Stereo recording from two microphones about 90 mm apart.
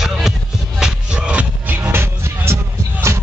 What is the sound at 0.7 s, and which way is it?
Music, 10° right (ahead or behind).